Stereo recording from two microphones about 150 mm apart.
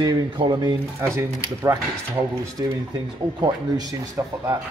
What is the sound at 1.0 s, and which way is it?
Speech, 15° right (ahead or behind).